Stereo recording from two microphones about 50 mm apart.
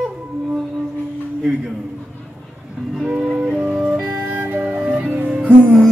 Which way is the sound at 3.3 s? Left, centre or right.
Right.